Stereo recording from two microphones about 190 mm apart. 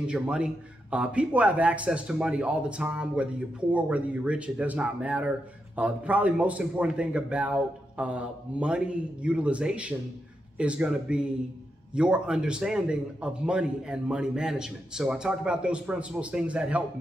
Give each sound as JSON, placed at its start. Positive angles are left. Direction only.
{"t": 0.0, "sound": "a man's voice", "side_deg": -5}